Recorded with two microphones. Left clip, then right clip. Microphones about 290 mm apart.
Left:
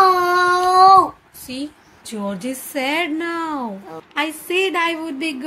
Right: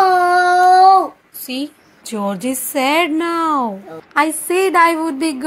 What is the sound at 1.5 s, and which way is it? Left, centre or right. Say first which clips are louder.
A woman's voice: right 5 dB; centre.